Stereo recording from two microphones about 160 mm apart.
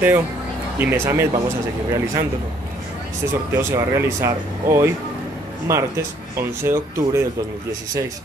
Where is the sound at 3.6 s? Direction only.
15° right (ahead or behind).